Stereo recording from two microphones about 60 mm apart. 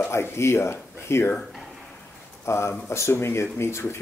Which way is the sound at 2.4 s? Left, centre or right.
Left.